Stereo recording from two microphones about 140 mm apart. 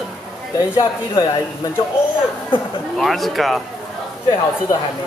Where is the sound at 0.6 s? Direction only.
25° left (ahead or behind).